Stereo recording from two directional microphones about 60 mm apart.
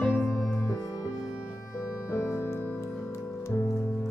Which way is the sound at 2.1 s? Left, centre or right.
Left.